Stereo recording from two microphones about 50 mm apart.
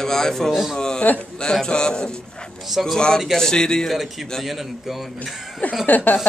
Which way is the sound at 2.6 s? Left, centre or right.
Centre.